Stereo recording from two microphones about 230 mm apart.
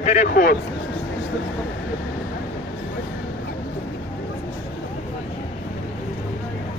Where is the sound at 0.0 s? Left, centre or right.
Left.